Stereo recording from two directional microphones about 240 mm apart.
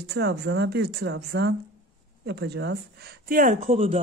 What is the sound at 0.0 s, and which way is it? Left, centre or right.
Speech, right.